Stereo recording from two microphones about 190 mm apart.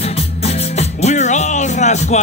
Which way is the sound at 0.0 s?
35° left (ahead or behind).